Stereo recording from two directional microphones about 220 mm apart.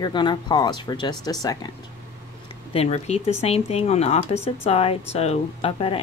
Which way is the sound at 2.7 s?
30° left (ahead or behind).